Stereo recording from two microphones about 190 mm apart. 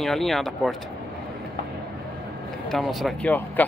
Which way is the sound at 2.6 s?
Centre (ahead or behind).